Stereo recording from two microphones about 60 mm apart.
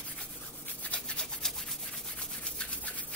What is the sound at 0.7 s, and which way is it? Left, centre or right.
Toothbrush, left.